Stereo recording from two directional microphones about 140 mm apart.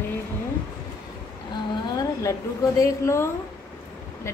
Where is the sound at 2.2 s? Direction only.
20° left (ahead or behind).